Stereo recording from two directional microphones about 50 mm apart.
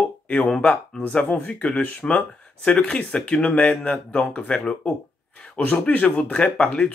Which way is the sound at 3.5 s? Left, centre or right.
Left.